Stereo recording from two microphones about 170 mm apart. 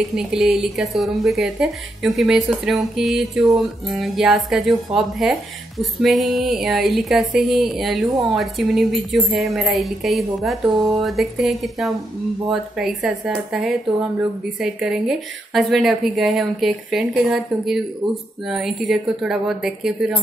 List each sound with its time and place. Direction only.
0.1 s speech: 5° right (ahead or behind)